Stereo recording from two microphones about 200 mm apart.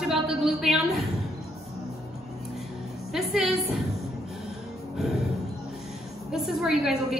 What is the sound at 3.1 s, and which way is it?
Speech, centre (ahead or behind).